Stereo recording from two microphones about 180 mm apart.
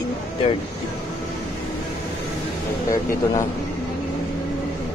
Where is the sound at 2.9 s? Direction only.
15° left (ahead or behind).